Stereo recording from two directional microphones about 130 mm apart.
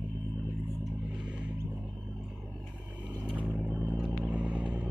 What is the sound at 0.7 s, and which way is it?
Vehicle, 5° right (ahead or behind).